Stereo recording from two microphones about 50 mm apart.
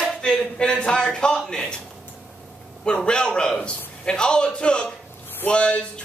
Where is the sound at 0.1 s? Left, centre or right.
Centre.